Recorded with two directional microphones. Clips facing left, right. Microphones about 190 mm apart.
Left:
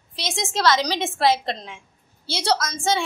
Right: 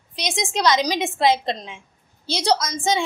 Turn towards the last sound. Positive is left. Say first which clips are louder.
# right 1 dB
turn(degrees=-15)  # may be behind; listen again after turning